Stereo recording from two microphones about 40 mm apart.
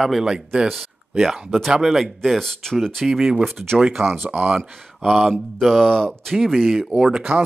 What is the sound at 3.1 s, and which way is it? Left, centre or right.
Speech, centre.